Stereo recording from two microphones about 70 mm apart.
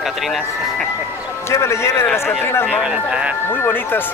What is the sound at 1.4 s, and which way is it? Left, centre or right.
Speech, left.